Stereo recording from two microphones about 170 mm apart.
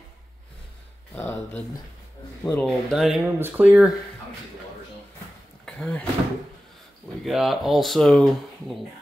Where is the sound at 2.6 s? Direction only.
Centre (ahead or behind).